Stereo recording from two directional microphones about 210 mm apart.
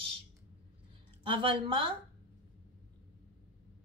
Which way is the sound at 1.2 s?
25° right (ahead or behind).